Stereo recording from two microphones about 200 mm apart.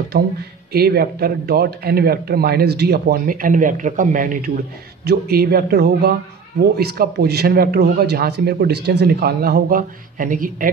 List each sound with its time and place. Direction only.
0.1 s speech: 45° right (ahead or behind)